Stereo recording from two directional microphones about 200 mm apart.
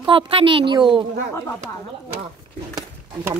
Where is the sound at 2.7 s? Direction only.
20° right (ahead or behind).